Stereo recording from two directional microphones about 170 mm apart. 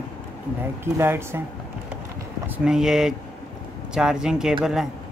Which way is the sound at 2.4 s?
10° right (ahead or behind).